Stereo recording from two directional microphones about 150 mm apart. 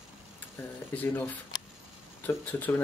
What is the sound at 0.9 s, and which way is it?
Speech, 10° left (ahead or behind).